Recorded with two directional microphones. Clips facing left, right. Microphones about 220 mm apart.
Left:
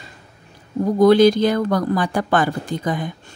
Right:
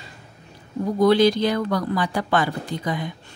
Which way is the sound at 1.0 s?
45° left (ahead or behind).